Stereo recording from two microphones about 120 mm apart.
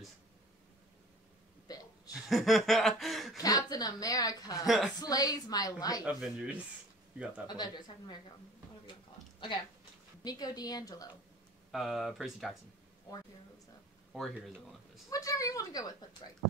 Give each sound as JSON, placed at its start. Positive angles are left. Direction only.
{"t": 1.7, "sound": "hiccup", "side_deg": 30}
{"t": 2.1, "sound": "chuckle", "side_deg": 0}
{"t": 3.3, "sound": "a woman's voice", "side_deg": 30}
{"t": 4.6, "sound": "speech", "side_deg": -5}
{"t": 5.0, "sound": "a woman's voice", "side_deg": 30}
{"t": 6.0, "sound": "speech", "side_deg": -10}
{"t": 7.4, "sound": "a woman's voice", "side_deg": 35}
{"t": 10.2, "sound": "a woman's voice", "side_deg": 35}
{"t": 11.7, "sound": "speech", "side_deg": 0}
{"t": 14.1, "sound": "speech", "side_deg": 0}
{"t": 15.0, "sound": "a woman's voice", "side_deg": 30}